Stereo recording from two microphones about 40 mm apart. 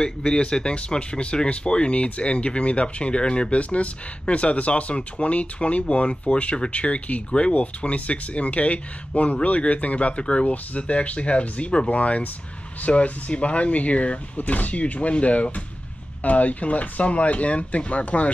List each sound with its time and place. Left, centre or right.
0.0 s speech: left